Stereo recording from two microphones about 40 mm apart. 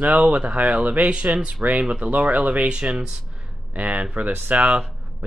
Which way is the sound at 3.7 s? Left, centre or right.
Right.